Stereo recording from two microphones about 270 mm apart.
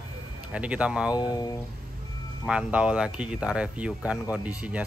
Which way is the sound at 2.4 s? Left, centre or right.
Centre.